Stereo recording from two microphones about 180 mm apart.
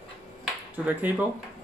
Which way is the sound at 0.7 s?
10° right (ahead or behind).